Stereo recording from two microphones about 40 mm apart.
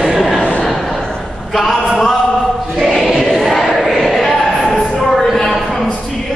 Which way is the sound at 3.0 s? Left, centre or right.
Centre.